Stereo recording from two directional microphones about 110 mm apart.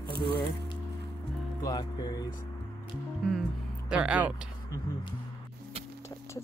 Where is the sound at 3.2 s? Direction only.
Centre (ahead or behind).